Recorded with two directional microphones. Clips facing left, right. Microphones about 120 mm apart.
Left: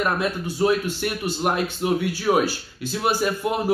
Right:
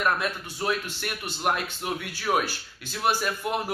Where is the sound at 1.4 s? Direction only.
10° left (ahead or behind).